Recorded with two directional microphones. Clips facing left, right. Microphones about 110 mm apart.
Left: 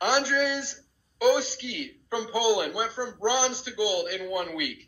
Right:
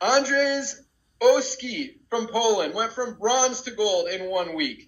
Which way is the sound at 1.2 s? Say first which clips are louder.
Right 4 dB; 45° right (ahead or behind).